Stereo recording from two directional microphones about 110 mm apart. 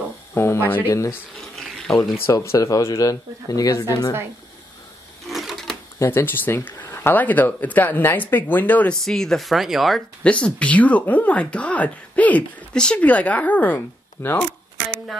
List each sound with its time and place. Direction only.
0.3 s speech: 25° left (ahead or behind)
2.2 s speech: 30° left (ahead or behind)
5.3 s sewing machine: centre (ahead or behind)
5.9 s speech: 20° left (ahead or behind)
9.0 s speech: 5° left (ahead or behind)
10.2 s speech: 10° left (ahead or behind)